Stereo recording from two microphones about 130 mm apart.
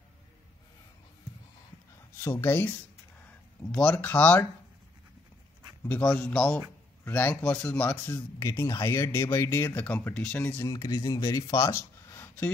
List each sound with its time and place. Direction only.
2.3 s speech: 15° left (ahead or behind)
3.7 s speech: 10° left (ahead or behind)
5.9 s speech: 10° left (ahead or behind)
8.4 s speech: 25° left (ahead or behind)
10.7 s speech: 30° left (ahead or behind)